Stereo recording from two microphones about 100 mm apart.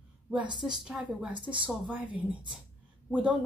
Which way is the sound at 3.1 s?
15° right (ahead or behind).